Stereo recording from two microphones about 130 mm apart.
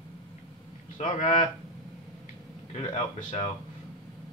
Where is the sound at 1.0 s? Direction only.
60° left (ahead or behind).